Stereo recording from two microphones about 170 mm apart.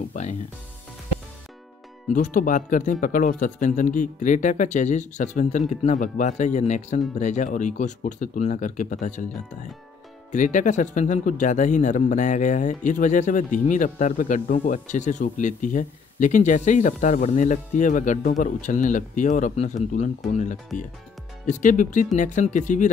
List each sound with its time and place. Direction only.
0.1 s speech: 45° left (ahead or behind)
2.1 s speech: 50° left (ahead or behind)
10.3 s speech: 45° left (ahead or behind)